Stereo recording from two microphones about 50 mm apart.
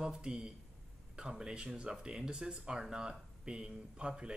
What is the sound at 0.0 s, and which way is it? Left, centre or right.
Speech, centre.